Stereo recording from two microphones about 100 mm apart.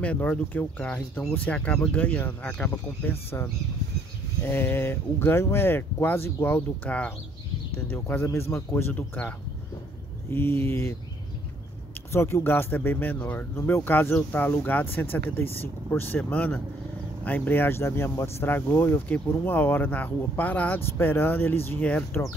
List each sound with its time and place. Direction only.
0.0 s speech: 15° left (ahead or behind)
4.5 s speech: 25° left (ahead or behind)
10.3 s speech: 20° left (ahead or behind)
12.1 s speech: 25° left (ahead or behind)